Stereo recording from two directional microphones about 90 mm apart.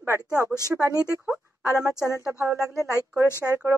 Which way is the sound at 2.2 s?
30° right (ahead or behind).